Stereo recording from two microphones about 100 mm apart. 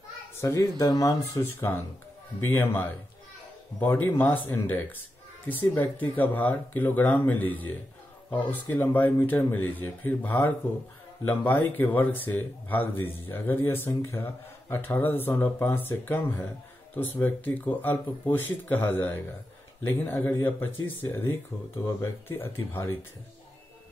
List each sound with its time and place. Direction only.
0.4 s speech: 30° left (ahead or behind)
1.4 s speech: 20° left (ahead or behind)